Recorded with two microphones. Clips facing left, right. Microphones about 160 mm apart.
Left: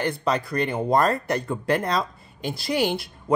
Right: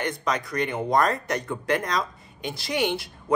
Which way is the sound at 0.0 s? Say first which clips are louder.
Left 3 dB; 30° left (ahead or behind).